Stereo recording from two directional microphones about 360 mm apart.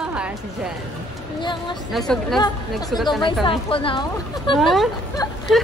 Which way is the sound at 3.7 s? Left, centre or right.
Centre.